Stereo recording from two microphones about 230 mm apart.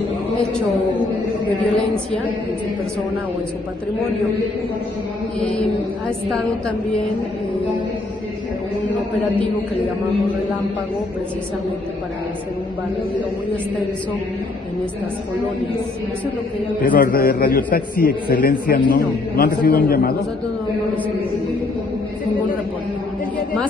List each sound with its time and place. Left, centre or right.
6.0 s a woman's voice: centre
16.8 s a man's voice: left